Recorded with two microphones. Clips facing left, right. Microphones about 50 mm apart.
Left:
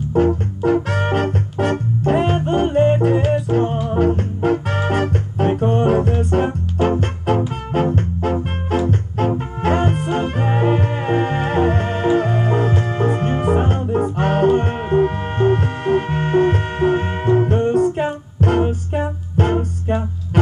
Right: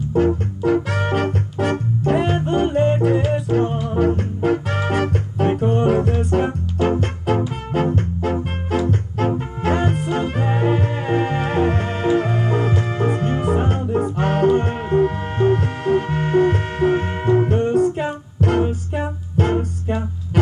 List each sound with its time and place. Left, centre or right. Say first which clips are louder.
0.8 s music: left 1 dB; left